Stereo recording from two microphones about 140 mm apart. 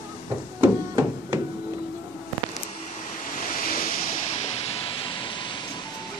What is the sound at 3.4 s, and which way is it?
Waves, 80° left.